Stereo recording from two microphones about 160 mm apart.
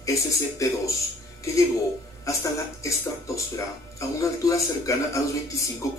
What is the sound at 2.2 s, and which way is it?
Speech, 20° left (ahead or behind).